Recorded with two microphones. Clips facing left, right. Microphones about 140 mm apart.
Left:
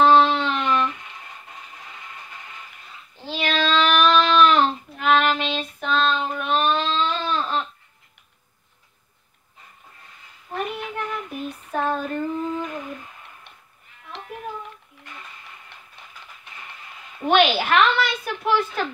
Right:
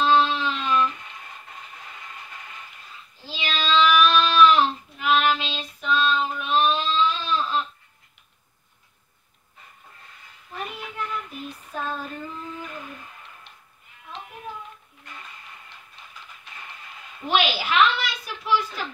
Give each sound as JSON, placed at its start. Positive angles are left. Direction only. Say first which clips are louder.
{"t": 0.0, "sound": "a sound", "louder": "left 4 dB", "side_deg": 65}
{"t": 3.2, "sound": "child singing", "louder": "left 6 dB", "side_deg": 60}
{"t": 10.5, "sound": "child singing", "louder": "left 6 dB", "side_deg": 60}
{"t": 11.4, "sound": "female singing", "louder": "left 7 dB", "side_deg": 65}
{"t": 14.1, "sound": "music", "louder": "even", "side_deg": 75}
{"t": 17.3, "sound": "a sound", "louder": "left 5 dB", "side_deg": 60}